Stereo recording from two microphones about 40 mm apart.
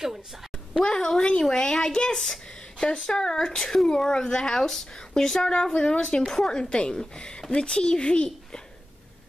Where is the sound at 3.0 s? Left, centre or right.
Centre.